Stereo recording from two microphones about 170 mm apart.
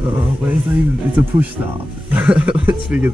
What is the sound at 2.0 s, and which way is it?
Speech, 5° right (ahead or behind).